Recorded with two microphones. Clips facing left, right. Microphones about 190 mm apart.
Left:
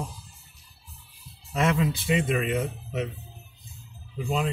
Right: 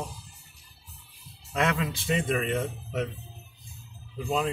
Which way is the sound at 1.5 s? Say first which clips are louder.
Left 3 dB; 5° left (ahead or behind).